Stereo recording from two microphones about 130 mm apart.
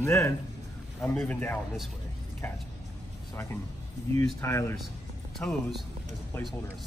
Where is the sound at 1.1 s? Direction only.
10° left (ahead or behind).